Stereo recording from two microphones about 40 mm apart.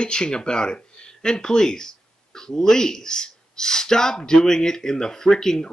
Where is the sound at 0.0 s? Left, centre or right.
Left.